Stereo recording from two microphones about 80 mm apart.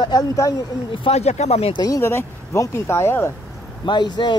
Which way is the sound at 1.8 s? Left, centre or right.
Left.